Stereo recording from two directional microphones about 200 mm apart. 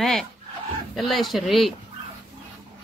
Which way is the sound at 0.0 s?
Centre (ahead or behind).